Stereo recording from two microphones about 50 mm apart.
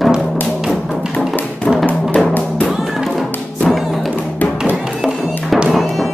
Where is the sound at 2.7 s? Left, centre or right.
Centre.